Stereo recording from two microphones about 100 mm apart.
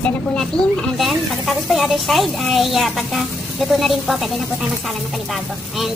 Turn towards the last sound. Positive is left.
turn(degrees=0)  # may be behind; listen again after turning